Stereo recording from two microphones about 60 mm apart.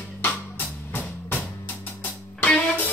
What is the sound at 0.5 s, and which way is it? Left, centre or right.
Music, left.